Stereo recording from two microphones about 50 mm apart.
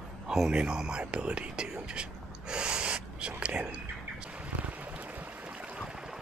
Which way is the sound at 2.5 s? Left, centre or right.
Centre.